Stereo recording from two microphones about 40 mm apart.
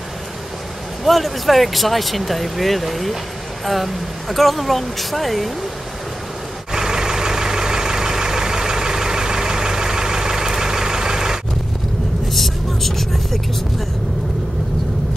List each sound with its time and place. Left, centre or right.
1.0 s speech: centre
6.7 s vehicle: centre
12.3 s vehicle: centre